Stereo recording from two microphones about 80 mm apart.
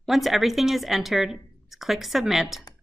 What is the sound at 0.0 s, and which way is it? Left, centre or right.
Speech, centre.